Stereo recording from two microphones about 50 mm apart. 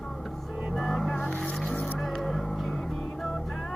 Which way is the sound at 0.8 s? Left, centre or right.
Centre.